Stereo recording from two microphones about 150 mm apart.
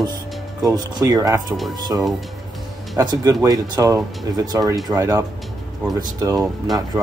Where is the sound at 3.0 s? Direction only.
25° right (ahead or behind).